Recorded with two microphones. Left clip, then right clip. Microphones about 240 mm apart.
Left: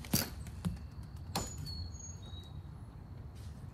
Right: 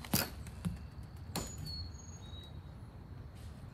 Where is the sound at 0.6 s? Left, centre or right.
Centre.